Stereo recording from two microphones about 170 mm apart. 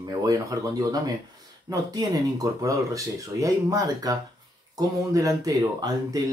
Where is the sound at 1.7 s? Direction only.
20° right (ahead or behind).